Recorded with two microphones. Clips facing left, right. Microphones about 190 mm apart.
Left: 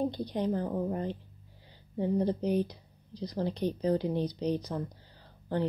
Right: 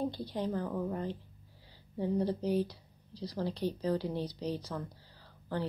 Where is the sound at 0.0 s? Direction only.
20° left (ahead or behind).